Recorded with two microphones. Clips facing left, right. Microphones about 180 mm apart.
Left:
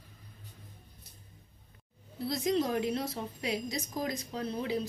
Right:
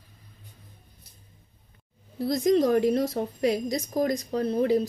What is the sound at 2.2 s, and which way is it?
Speech, 50° right (ahead or behind).